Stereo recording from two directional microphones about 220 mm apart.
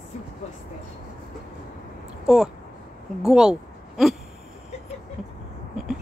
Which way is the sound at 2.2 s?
Centre (ahead or behind).